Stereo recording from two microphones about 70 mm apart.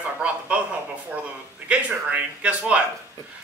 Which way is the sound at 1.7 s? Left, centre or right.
Centre.